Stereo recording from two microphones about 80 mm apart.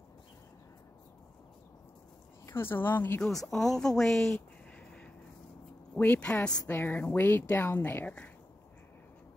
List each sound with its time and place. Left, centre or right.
2.5 s a woman's voice: left
3.2 s a woman's voice: centre; by 8.2 s left